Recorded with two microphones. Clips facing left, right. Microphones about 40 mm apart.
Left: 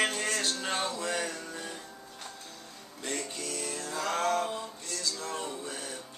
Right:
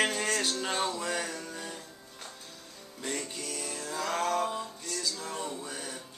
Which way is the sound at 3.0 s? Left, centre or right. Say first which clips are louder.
Even; centre.